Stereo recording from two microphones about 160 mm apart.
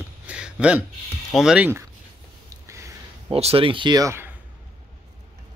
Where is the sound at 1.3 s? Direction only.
5° right (ahead or behind).